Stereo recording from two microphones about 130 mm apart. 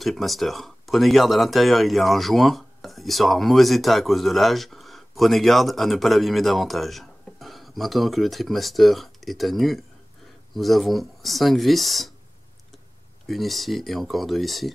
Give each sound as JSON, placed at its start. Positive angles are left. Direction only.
{"t": 0.0, "sound": "speech", "side_deg": 0}
{"t": 13.3, "sound": "speech", "side_deg": 0}